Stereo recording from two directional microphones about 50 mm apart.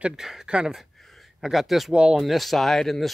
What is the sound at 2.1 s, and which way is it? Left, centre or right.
Speech, centre.